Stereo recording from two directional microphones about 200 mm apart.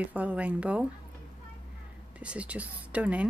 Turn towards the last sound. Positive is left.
turn(degrees=-5)  # may be behind; listen again after turning